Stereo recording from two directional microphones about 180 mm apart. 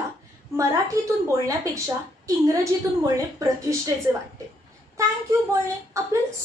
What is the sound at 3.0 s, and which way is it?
Speech, 15° right (ahead or behind).